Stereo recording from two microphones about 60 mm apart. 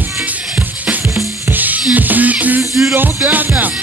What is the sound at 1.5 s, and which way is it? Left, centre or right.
Music, right.